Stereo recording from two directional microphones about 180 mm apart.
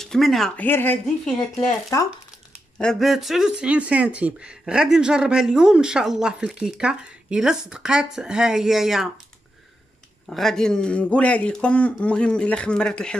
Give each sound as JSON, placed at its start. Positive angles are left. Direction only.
{"t": 0.0, "sound": "speech", "side_deg": 0}
{"t": 2.8, "sound": "speech", "side_deg": 0}
{"t": 10.3, "sound": "speech", "side_deg": 0}